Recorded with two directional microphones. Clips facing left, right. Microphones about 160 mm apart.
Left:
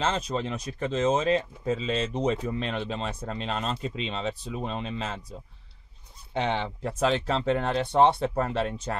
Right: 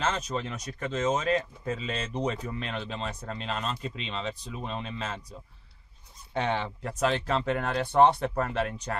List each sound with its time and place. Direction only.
0.0 s speech: 30° left (ahead or behind)
6.4 s speech: 25° left (ahead or behind)